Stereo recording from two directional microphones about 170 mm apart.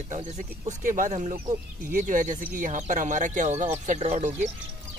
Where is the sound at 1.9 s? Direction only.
50° right (ahead or behind).